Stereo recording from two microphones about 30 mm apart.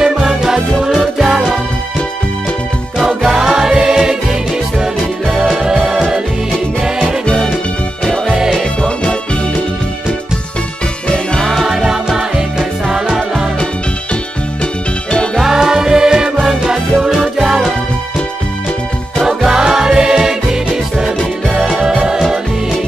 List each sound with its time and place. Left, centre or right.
0.0 s music: right
3.3 s music: right
11.6 s music: centre
15.4 s music: right
19.2 s music: right